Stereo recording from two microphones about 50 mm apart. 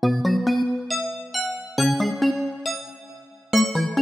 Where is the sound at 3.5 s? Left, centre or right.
Centre.